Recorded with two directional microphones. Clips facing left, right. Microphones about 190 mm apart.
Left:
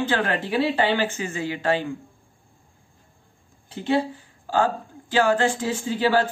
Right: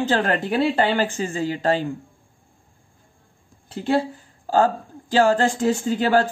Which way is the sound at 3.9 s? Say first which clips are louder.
Right 1 dB; 45° right (ahead or behind).